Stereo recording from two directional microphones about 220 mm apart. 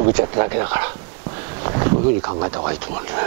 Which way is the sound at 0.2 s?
15° right (ahead or behind).